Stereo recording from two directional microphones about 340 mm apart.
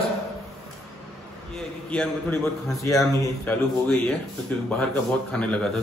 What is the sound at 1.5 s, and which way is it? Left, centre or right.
A man's voice, centre.